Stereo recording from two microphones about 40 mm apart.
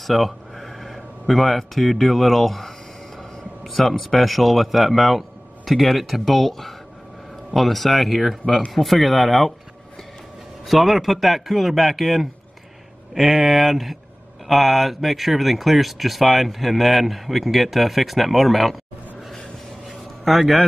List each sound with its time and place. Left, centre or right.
0.0 s speech: centre
10.7 s speech: centre
19.9 s a sound: centre